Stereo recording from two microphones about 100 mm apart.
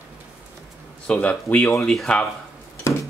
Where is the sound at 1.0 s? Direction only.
10° left (ahead or behind).